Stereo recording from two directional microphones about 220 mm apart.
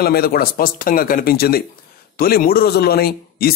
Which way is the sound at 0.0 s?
45° left (ahead or behind).